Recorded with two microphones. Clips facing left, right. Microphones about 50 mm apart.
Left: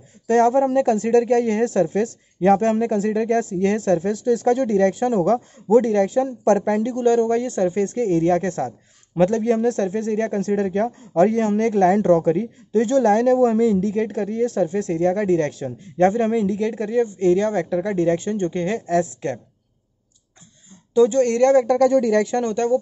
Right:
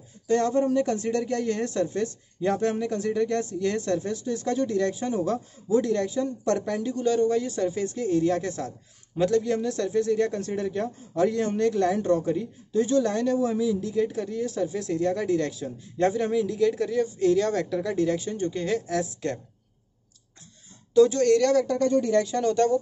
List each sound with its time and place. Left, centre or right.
0.3 s speech: left
20.9 s speech: left
21.7 s speech: left
22.4 s speech: left